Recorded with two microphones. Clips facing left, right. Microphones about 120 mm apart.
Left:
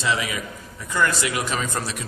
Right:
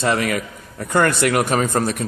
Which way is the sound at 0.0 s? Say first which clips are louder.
Right 6 dB; 55° right (ahead or behind).